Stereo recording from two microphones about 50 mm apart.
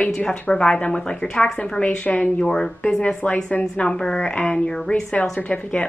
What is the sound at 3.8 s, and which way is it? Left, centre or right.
Speech, centre.